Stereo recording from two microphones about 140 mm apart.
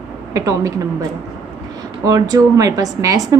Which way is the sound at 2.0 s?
25° right (ahead or behind).